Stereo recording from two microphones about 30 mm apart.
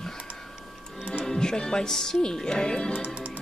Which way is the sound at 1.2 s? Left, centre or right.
Left.